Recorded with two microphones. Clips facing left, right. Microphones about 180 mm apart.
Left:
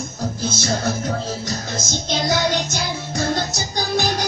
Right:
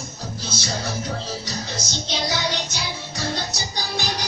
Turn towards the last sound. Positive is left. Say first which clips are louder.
# left 7 dB
turn(degrees=50)  # may be behind; listen again after turning